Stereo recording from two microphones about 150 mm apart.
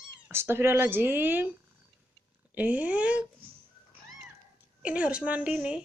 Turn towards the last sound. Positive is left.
turn(degrees=-10)  # may be behind; listen again after turning